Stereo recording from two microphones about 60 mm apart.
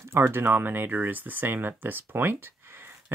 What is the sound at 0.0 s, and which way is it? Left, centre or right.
Speech, right.